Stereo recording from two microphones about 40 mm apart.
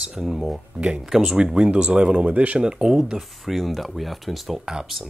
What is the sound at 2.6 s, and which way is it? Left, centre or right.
Speech, centre.